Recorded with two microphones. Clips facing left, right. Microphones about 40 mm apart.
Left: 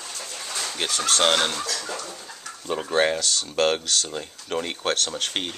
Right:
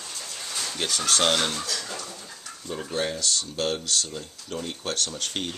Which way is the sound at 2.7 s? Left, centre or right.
Left.